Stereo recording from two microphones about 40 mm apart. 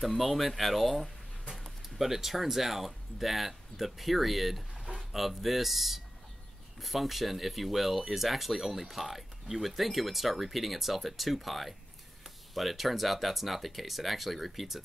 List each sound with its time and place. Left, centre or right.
0.0 s speech: centre